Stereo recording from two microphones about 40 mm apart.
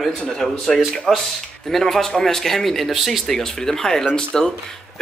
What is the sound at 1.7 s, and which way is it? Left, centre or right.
Speech, centre.